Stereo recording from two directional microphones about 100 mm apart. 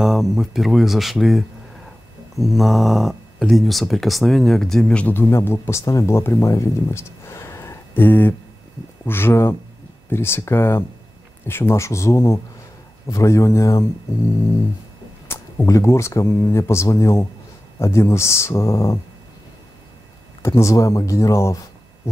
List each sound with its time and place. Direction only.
0.0 s speech: 5° right (ahead or behind)
5.1 s a man's voice: 25° left (ahead or behind)
15.2 s a sound: 25° left (ahead or behind)
15.7 s speech: 30° left (ahead or behind)
20.4 s speech: 30° left (ahead or behind)